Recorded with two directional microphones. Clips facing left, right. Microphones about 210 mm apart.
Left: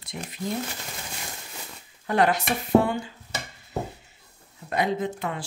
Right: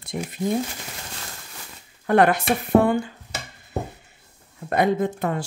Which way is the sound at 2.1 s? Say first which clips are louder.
Right 5 dB; 55° right (ahead or behind).